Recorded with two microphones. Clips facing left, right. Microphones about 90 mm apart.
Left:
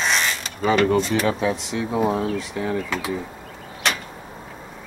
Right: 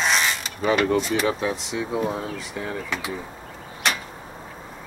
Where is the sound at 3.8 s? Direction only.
Centre (ahead or behind).